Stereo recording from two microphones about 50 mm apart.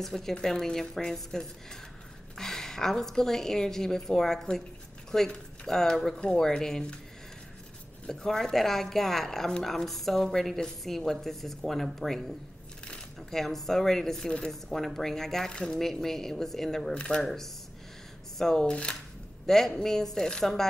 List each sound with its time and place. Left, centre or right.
0.0 s a woman's voice: centre
8.1 s a woman's voice: centre
13.3 s a woman's voice: centre
19.4 s a woman's voice: centre